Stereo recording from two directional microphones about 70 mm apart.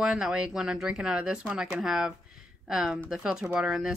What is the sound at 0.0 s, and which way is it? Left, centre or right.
Speech, centre.